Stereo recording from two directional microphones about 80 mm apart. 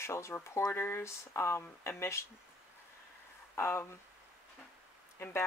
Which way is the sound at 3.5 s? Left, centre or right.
Left.